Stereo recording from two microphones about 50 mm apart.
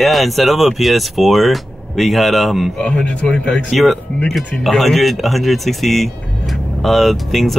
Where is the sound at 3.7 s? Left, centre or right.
Centre.